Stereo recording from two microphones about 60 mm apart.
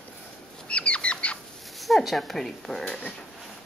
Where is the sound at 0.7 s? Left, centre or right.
Centre.